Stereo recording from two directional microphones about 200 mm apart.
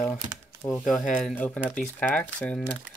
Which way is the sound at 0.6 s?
15° left (ahead or behind).